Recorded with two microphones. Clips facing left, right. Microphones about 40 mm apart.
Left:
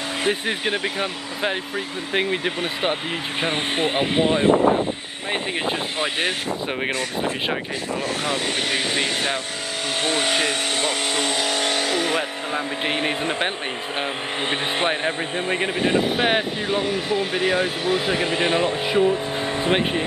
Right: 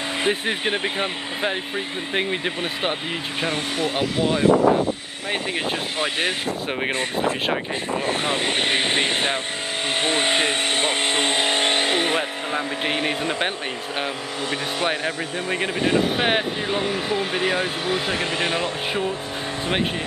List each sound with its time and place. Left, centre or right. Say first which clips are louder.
0.3 s speech: even; centre
2.1 s speech: left 2 dB; centre
3.4 s speech: left 2 dB; left
5.3 s speech: left 1 dB; centre
7.9 s speech: right 1 dB; right
12.2 s speech: even; centre
15.0 s speech: left 2 dB; left
15.9 s speech: even; centre